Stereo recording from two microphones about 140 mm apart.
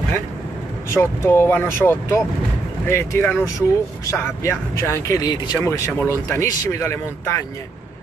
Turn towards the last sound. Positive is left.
turn(degrees=20)  # may be behind; listen again after turning